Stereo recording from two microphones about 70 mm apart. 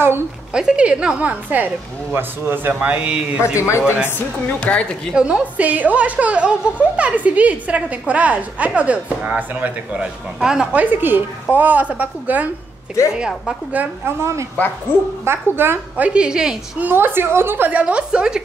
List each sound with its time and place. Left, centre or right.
0.5 s a woman's voice: centre; by 2.7 s right
2.8 s a woman's voice: centre
3.5 s speech: left
3.8 s a woman's voice: right
4.6 s a woman's voice: centre
5.1 s a woman's voice: centre
9.9 s a woman's voice: centre
10.7 s a woman's voice: right
13.0 s speech: left
14.0 s a woman's voice: right
16.0 s a woman's voice: centre
16.8 s a woman's voice: right; by 18.4 s centre